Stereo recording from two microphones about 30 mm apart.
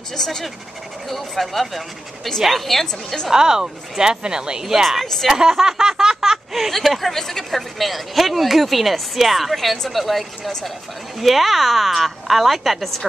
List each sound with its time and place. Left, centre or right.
0.1 s a woman's voice: centre
1.0 s a woman's voice: centre
3.3 s speech: centre
5.0 s a woman's voice: centre
5.3 s a sound: centre
6.9 s a woman's voice: centre
7.8 s speech: centre